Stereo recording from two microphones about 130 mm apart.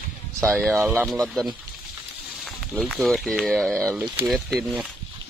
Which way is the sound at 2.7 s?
Centre (ahead or behind).